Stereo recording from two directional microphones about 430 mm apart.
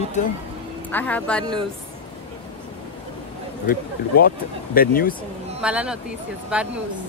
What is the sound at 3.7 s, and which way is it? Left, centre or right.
Speech, left.